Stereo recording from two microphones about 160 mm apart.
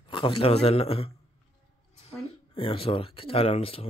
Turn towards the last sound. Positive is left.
turn(degrees=35)  # may be behind; listen again after turning